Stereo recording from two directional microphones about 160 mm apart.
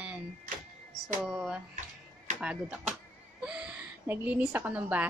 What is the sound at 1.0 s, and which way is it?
Speech, 5° right (ahead or behind).